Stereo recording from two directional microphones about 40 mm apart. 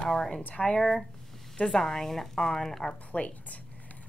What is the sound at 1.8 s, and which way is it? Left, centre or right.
A woman's voice, centre.